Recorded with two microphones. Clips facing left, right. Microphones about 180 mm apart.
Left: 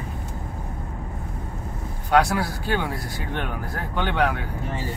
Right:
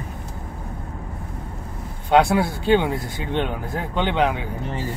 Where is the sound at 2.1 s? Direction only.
25° right (ahead or behind).